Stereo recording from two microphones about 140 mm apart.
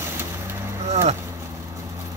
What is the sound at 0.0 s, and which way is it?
Vehicle, 15° right (ahead or behind).